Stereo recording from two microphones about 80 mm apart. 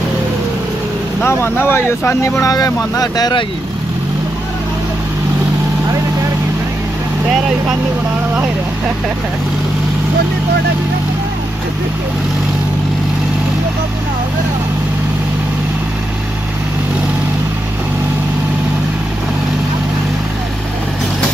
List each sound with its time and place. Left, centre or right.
1.2 s speech: left
2.5 s speech: left